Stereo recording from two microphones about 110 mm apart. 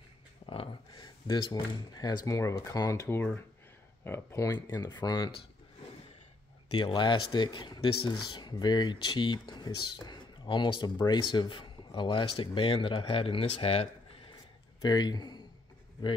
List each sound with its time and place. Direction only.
0.4 s a sound: 90° left
0.9 s speech: 45° left (ahead or behind); by 4.6 s 25° left (ahead or behind)
4.6 s speech: 40° left (ahead or behind)
6.7 s speech: 50° left (ahead or behind)
14.8 s speech: 40° left (ahead or behind)